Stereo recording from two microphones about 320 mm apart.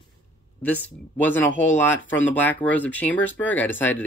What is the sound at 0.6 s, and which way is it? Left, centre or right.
Speech, centre.